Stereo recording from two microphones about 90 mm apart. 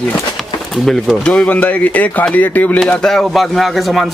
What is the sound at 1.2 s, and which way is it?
Speech, 15° left (ahead or behind).